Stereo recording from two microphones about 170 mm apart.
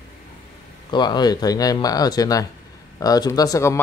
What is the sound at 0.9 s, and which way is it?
Speech, 25° left (ahead or behind).